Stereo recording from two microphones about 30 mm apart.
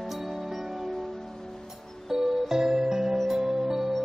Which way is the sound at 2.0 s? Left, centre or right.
Centre.